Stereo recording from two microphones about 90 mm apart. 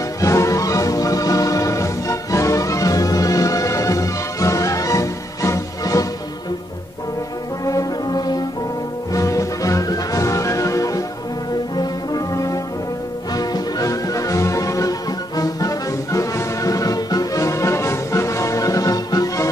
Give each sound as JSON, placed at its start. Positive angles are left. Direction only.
{"t": 0.2, "sound": "music", "side_deg": 35}
{"t": 7.6, "sound": "brass instrument", "side_deg": 45}
{"t": 9.1, "sound": "music", "side_deg": 35}
{"t": 11.7, "sound": "brass instrument", "side_deg": 45}
{"t": 13.4, "sound": "music", "side_deg": 45}